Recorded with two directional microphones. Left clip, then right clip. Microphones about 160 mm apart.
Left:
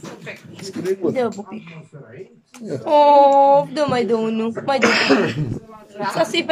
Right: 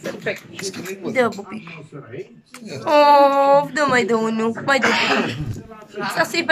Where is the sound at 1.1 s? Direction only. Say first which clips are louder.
Right 2 dB; 15° left (ahead or behind).